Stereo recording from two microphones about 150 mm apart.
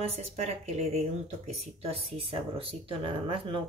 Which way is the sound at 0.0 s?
45° right (ahead or behind).